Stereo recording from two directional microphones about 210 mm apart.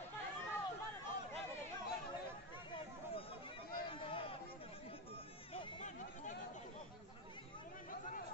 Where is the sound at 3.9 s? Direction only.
25° left (ahead or behind).